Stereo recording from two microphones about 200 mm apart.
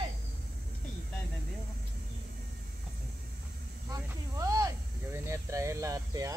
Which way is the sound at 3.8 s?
15° right (ahead or behind).